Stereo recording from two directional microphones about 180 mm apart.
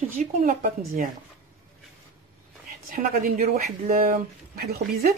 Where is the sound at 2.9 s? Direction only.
50° right (ahead or behind).